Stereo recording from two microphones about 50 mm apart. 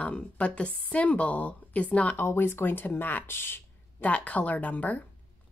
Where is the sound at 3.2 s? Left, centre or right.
Left.